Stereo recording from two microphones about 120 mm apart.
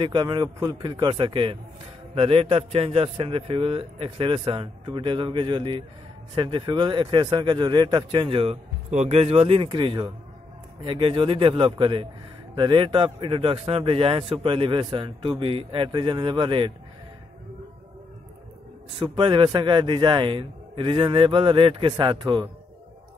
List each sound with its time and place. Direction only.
0.0 s a man's voice: 40° right (ahead or behind)
8.9 s a man's voice: 70° right (ahead or behind); by 16.7 s 40° right (ahead or behind)
19.0 s a man's voice: 45° right (ahead or behind)